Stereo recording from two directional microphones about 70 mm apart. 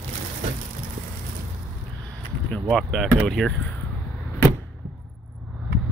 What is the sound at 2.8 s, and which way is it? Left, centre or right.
Speech, centre.